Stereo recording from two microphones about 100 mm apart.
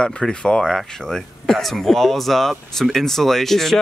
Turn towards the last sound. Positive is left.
turn(degrees=5)  # may be behind; listen again after turning